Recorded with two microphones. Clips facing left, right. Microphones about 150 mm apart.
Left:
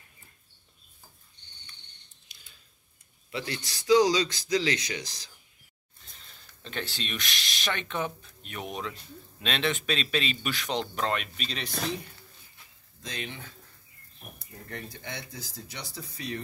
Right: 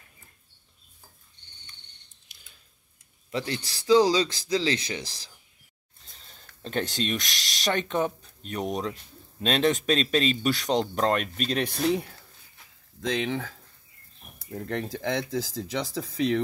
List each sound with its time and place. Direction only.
3.3 s speech: 35° right (ahead or behind)
6.2 s a man's voice: 40° right (ahead or behind)
13.0 s speech: 90° right